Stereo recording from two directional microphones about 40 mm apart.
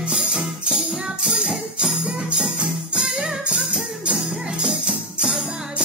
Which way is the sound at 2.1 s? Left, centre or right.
Right.